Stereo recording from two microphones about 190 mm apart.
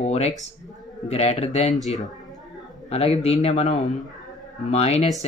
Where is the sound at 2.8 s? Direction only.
35° left (ahead or behind).